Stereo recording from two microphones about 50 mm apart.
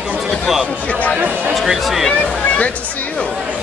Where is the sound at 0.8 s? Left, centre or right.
Left.